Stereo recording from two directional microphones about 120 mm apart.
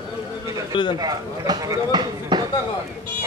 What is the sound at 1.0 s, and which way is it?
Speech, 35° right (ahead or behind).